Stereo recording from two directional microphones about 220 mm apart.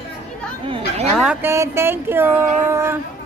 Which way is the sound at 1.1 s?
5° right (ahead or behind).